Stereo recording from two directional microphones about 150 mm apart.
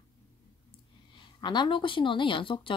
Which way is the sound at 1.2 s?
30° left (ahead or behind).